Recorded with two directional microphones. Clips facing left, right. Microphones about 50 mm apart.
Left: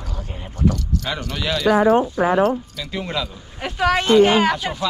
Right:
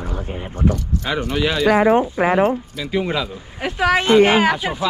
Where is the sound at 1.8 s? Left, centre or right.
Right.